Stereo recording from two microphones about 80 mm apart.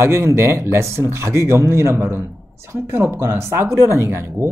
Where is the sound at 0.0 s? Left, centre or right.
Right.